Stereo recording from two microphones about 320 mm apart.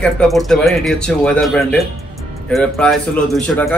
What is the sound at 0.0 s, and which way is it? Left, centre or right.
A man's voice, centre.